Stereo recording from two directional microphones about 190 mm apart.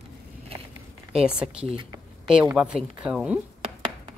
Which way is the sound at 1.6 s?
25° right (ahead or behind).